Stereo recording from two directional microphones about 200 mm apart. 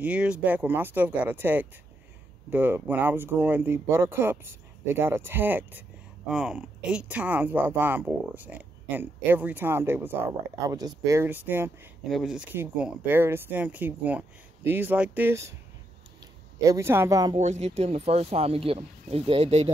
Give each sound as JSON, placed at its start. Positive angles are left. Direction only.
{"t": 0.0, "sound": "speech", "side_deg": -5}
{"t": 16.6, "sound": "speech", "side_deg": -15}
{"t": 17.4, "sound": "speech", "side_deg": -35}